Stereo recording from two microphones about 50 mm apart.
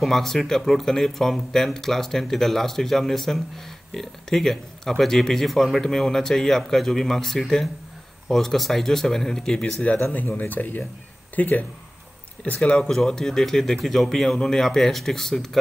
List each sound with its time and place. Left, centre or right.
0.0 s speech: centre
10.1 s speech: left
12.4 s speech: left